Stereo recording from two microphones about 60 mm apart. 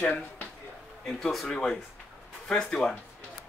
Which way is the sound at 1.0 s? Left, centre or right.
Centre.